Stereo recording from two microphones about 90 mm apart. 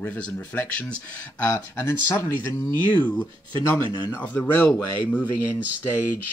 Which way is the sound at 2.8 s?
20° left (ahead or behind).